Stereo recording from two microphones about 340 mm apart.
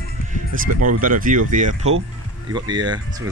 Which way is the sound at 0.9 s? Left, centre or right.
Right.